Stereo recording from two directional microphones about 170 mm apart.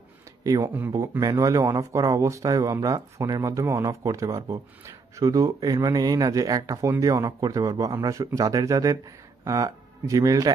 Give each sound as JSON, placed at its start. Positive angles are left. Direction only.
{"t": 0.4, "sound": "speech", "side_deg": -20}